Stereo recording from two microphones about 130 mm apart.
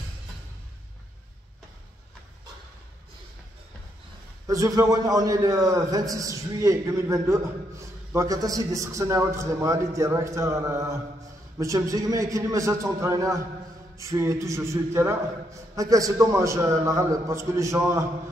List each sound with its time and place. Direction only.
4.5 s a man's voice: 25° right (ahead or behind)